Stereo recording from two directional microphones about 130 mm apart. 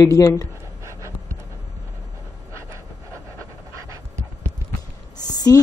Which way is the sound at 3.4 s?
25° right (ahead or behind).